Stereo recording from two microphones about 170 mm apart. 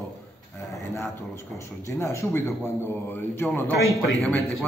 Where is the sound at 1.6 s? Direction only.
15° left (ahead or behind).